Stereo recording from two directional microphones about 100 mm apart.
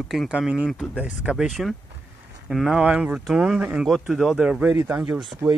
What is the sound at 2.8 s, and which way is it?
Speech, 15° right (ahead or behind).